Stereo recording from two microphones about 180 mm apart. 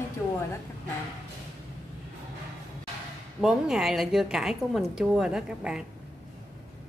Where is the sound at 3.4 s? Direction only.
Centre (ahead or behind).